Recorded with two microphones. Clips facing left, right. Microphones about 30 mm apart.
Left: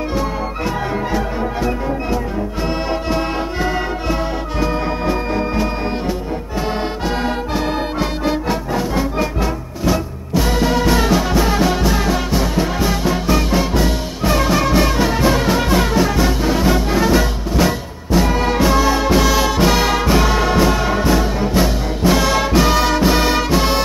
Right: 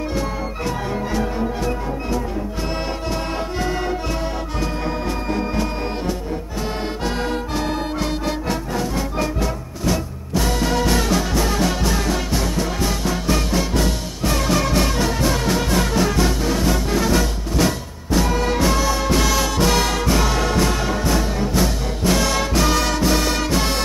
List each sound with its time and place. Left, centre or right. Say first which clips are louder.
0.7 s music: left 3 dB; centre
7.2 s music: left 3 dB; centre